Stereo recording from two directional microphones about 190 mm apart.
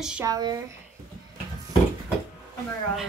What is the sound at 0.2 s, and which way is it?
Speech, 20° right (ahead or behind).